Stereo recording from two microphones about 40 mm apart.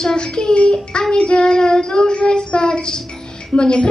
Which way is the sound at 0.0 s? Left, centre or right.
Centre.